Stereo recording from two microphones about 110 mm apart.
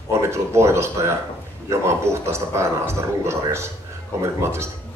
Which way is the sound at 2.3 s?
25° right (ahead or behind).